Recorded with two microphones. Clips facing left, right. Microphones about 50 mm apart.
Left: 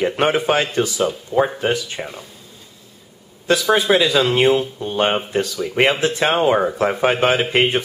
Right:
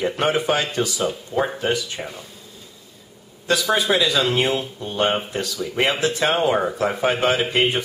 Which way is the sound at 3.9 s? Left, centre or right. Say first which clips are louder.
Left 3 dB; centre.